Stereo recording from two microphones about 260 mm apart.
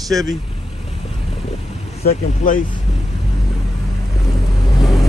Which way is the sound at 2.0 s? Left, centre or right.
Left.